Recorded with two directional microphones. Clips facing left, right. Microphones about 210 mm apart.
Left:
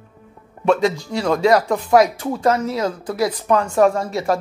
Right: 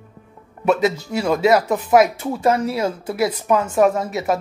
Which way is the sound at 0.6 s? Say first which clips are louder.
Left 1 dB; 5° right (ahead or behind).